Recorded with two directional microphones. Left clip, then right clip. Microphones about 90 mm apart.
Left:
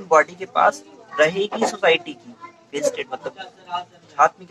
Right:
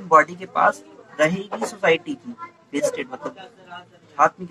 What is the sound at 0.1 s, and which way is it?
A man's voice, 25° left (ahead or behind).